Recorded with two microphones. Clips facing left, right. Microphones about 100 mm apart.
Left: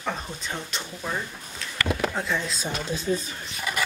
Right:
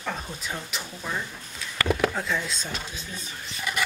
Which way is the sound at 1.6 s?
5° right (ahead or behind).